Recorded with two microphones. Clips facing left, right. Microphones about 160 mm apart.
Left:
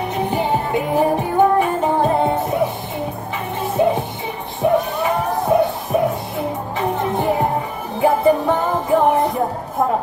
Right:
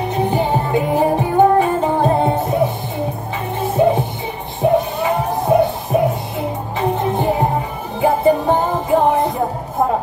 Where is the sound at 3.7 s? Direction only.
30° right (ahead or behind).